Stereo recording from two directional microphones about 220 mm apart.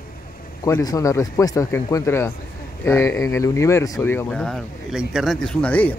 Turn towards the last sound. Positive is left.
turn(degrees=5)  # may be behind; listen again after turning